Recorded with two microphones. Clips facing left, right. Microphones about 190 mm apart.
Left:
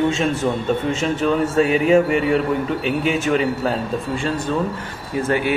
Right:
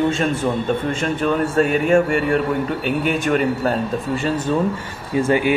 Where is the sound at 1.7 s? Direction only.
5° left (ahead or behind).